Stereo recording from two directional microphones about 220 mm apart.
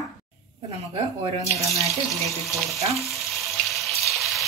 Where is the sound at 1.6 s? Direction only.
Centre (ahead or behind).